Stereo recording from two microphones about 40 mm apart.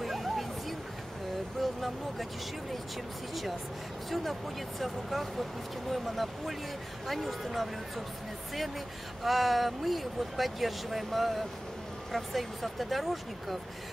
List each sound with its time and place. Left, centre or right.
0.0 s music: centre
1.6 s vehicle: centre
4.1 s speech: centre
9.2 s speech: centre